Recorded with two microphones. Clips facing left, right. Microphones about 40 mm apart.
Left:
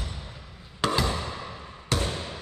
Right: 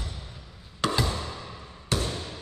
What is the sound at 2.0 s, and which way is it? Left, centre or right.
Basketball bounce, centre.